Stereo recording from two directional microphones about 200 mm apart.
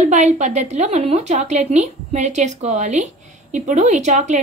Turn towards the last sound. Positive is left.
turn(degrees=-35)  # may be behind; listen again after turning